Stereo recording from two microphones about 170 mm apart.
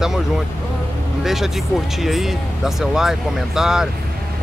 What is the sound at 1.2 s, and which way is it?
Speech, centre (ahead or behind).